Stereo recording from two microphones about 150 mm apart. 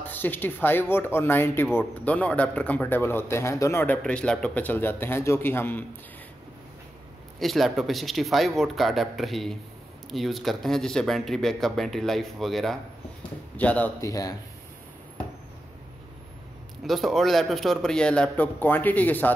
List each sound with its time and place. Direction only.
0.0 s speech: 10° left (ahead or behind)
7.3 s speech: centre (ahead or behind)
14.0 s speech: 25° left (ahead or behind)
16.8 s speech: centre (ahead or behind)